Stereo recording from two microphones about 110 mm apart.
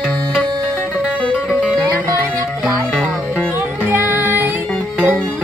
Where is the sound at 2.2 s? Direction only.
25° right (ahead or behind).